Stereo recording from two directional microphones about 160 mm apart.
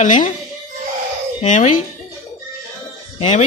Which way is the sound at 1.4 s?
50° left (ahead or behind).